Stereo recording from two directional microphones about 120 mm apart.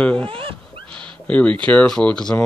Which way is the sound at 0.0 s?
10° left (ahead or behind).